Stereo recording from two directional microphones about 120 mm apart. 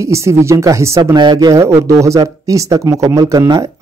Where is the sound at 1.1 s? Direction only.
35° right (ahead or behind).